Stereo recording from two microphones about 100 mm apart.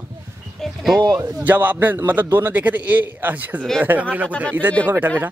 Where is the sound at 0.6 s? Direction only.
Centre (ahead or behind).